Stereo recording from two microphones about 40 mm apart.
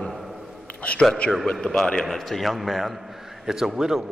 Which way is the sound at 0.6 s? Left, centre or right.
Left.